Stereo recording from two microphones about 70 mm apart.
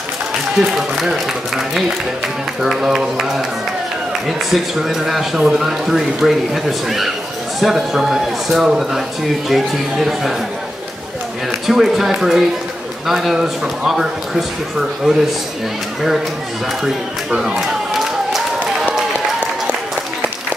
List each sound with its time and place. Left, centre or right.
0.6 s a man's voice: centre
2.6 s a man's voice: centre
11.6 s a man's voice: centre
16.8 s a sound: centre